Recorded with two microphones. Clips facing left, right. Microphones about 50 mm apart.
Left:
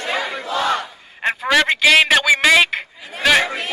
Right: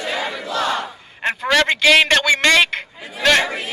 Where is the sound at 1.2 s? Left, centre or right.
Centre.